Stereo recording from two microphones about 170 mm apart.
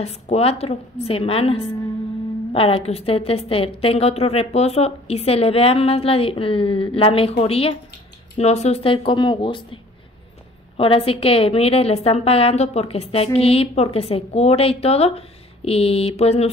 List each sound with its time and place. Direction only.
0.0 s a woman's voice: 40° left (ahead or behind)
10.8 s a woman's voice: 35° left (ahead or behind)